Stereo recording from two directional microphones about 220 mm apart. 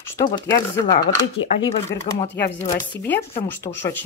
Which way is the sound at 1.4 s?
60° left (ahead or behind).